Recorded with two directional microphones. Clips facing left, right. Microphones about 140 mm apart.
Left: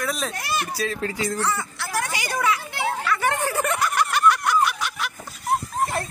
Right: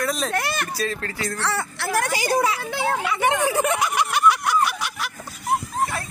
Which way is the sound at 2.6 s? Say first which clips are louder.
Right 3 dB; 90° right.